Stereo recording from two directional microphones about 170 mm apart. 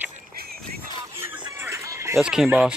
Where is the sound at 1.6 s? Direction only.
15° right (ahead or behind).